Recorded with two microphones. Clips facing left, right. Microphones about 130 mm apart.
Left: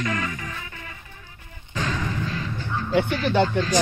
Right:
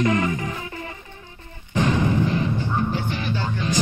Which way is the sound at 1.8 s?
25° right (ahead or behind).